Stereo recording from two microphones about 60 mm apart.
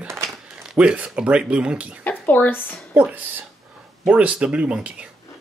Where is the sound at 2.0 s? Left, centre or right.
Left.